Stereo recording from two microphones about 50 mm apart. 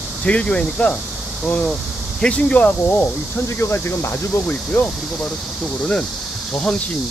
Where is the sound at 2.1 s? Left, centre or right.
Left.